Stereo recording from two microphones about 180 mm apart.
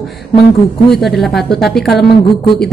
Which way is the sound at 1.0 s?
Centre (ahead or behind).